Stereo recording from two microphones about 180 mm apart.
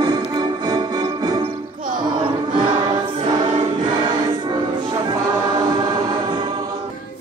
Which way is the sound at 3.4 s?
25° right (ahead or behind).